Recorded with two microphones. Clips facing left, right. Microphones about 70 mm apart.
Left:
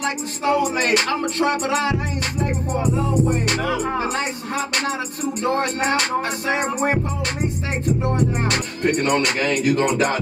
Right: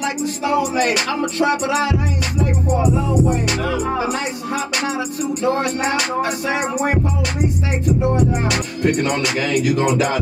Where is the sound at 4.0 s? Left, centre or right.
Left.